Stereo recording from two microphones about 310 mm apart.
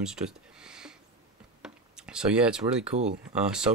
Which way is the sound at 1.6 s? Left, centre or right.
Centre.